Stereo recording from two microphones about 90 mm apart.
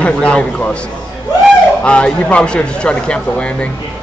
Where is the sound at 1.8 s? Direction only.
10° left (ahead or behind).